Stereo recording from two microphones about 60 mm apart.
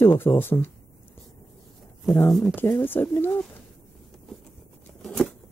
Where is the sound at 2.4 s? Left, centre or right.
Left.